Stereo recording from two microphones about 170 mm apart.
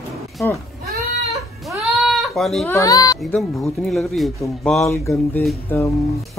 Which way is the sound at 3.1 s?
Centre (ahead or behind).